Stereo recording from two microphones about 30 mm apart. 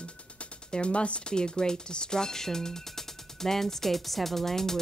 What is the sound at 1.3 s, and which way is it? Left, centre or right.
Speech, left.